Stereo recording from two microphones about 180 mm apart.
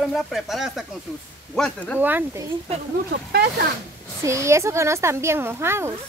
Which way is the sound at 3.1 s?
60° right (ahead or behind).